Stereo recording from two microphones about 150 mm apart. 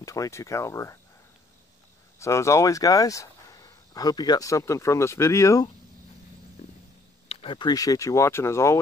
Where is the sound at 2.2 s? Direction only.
20° left (ahead or behind).